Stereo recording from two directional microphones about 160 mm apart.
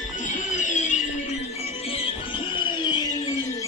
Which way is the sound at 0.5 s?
50° left (ahead or behind).